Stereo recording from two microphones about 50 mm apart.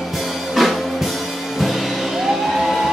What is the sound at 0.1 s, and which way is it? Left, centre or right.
Music, centre.